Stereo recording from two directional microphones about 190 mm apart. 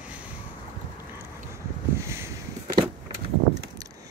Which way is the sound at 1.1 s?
15° right (ahead or behind).